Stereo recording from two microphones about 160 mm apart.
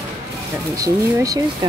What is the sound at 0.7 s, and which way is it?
Speech, 20° right (ahead or behind).